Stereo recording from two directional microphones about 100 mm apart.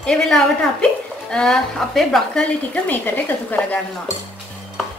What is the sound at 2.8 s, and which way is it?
Speech, 15° left (ahead or behind).